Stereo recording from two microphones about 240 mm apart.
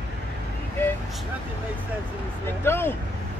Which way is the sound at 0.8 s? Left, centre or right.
Centre.